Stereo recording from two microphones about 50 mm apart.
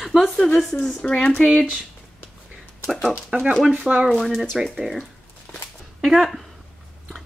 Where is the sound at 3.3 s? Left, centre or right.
Right.